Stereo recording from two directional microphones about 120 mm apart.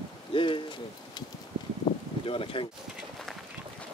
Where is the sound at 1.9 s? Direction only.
45° left (ahead or behind).